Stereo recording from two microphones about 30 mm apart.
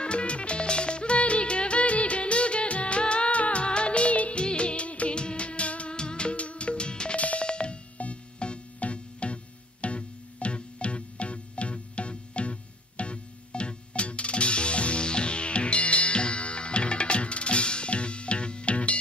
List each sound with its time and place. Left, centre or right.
0.0 s music: left
3.6 s music: left
4.4 s music: left
5.1 s music: left
5.9 s music: left
6.3 s music: left
7.2 s music: left
7.4 s music: left